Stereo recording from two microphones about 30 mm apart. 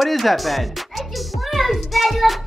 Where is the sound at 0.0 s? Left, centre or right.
Centre.